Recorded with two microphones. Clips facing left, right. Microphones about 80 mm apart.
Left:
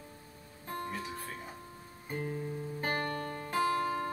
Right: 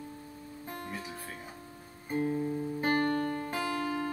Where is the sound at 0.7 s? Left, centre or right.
Left.